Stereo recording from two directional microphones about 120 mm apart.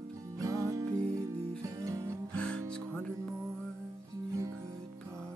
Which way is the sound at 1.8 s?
25° right (ahead or behind).